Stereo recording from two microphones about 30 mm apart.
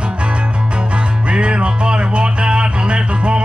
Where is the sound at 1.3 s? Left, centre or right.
Right.